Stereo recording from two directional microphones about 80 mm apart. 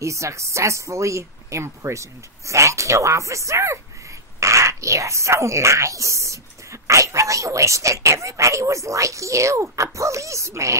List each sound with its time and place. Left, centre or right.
0.0 s speech: right